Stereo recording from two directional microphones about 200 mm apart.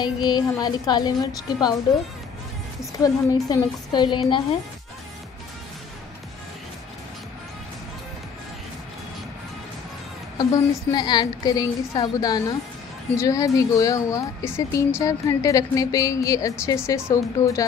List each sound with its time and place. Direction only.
0.0 s a woman's voice: 20° left (ahead or behind)
2.8 s a woman's voice: 15° left (ahead or behind)
10.3 s a woman's voice: 20° left (ahead or behind)